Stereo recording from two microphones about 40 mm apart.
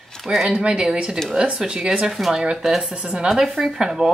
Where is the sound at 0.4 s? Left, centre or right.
Centre.